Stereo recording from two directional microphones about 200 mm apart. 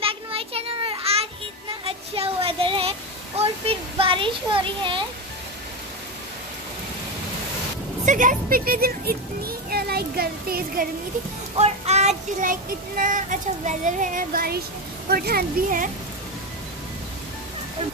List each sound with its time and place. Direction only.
0.0 s children playing: 25° right (ahead or behind)
8.0 s a child's voice: 40° right (ahead or behind)
11.5 s child singing: 30° right (ahead or behind); by 14.6 s 45° right (ahead or behind)
15.0 s a child's voice: 50° right (ahead or behind)